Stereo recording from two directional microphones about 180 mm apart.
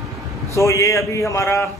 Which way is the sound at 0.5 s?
15° left (ahead or behind).